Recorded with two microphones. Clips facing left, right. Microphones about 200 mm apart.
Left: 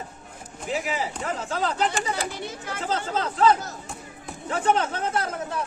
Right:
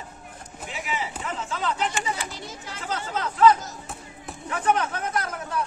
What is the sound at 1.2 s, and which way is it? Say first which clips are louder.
Speech: left 2 dB; 40° left (ahead or behind).